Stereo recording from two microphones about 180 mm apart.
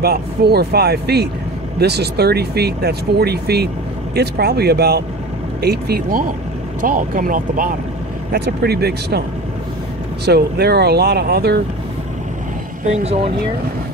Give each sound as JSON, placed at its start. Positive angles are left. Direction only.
{"t": 0.0, "sound": "speech", "side_deg": -60}
{"t": 8.3, "sound": "speech", "side_deg": -65}
{"t": 10.2, "sound": "speech", "side_deg": -60}
{"t": 12.8, "sound": "speech", "side_deg": -40}